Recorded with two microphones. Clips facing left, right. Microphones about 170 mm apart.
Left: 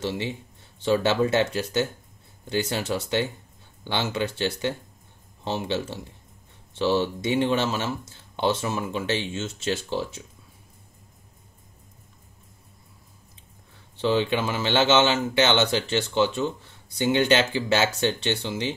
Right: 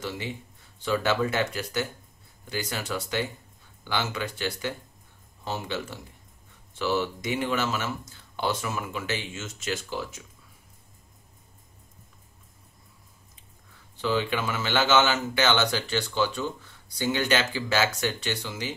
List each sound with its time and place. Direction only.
0.8 s speech: 25° left (ahead or behind)
13.9 s speech: 25° left (ahead or behind)